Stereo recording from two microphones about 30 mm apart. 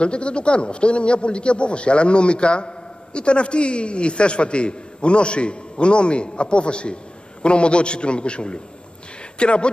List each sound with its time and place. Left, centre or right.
0.0 s a man's voice: left